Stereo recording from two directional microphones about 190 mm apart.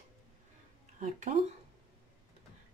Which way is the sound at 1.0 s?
40° right (ahead or behind).